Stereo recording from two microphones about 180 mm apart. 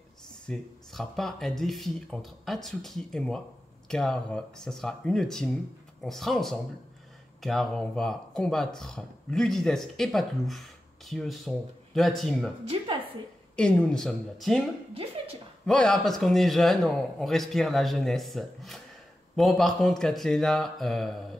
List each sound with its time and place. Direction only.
0.5 s a man's voice: centre (ahead or behind)
12.6 s music: 25° right (ahead or behind)
13.6 s a man's voice: 5° left (ahead or behind)
15.6 s a man's voice: 5° left (ahead or behind)